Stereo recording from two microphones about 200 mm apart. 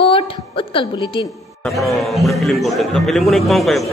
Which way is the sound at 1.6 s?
Centre (ahead or behind).